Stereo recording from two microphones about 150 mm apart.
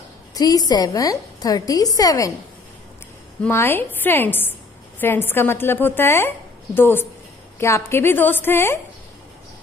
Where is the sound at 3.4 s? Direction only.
15° left (ahead or behind).